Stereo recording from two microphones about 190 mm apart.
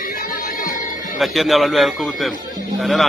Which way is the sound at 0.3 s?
45° left (ahead or behind).